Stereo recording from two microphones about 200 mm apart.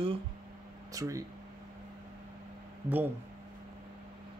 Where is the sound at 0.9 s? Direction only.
15° right (ahead or behind).